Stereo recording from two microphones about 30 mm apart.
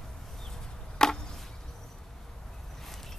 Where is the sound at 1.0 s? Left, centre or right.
Left.